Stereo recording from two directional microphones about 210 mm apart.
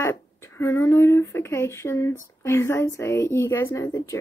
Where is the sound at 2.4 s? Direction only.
10° left (ahead or behind).